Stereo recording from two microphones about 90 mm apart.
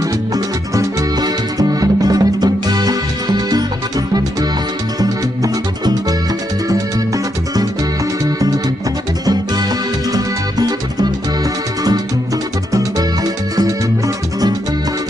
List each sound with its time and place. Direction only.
0.3 s music: 45° right (ahead or behind)
5.0 s music: 45° right (ahead or behind)
9.2 s music: 45° right (ahead or behind)
12.7 s music: 40° right (ahead or behind)